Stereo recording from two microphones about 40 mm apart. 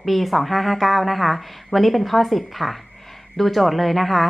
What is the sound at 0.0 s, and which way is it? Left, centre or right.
A woman's voice, centre.